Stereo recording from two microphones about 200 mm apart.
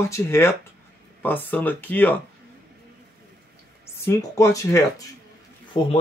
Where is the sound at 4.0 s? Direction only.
15° left (ahead or behind).